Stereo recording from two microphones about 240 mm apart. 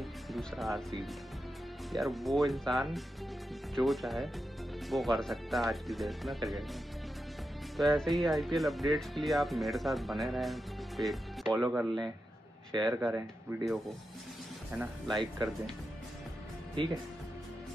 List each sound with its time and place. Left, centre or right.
0.0 s speech: centre
7.7 s speech: centre